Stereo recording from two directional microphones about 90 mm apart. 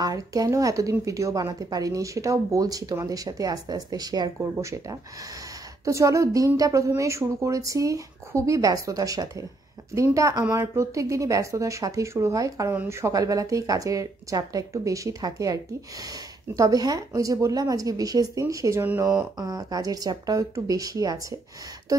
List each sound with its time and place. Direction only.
0.0 s speech: 45° right (ahead or behind)
4.4 s speech: 35° right (ahead or behind)